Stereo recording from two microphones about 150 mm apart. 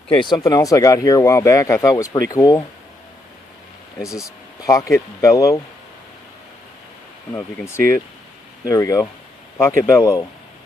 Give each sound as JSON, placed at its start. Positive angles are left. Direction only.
{"t": 0.1, "sound": "speech", "side_deg": 30}
{"t": 4.2, "sound": "speech", "side_deg": 20}
{"t": 7.3, "sound": "speech", "side_deg": 15}